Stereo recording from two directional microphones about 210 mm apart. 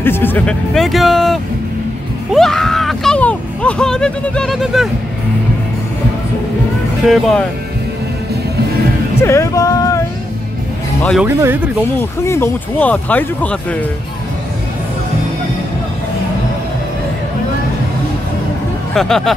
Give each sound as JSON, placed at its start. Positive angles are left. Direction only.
{"t": 0.0, "sound": "speech", "side_deg": 10}
{"t": 2.3, "sound": "a sound", "side_deg": 0}
{"t": 7.1, "sound": "speech", "side_deg": 0}
{"t": 9.2, "sound": "a sound", "side_deg": 15}
{"t": 11.0, "sound": "speech", "side_deg": 5}
{"t": 11.2, "sound": "speech", "side_deg": -10}
{"t": 12.0, "sound": "speech", "side_deg": 10}
{"t": 18.9, "sound": "speech", "side_deg": 0}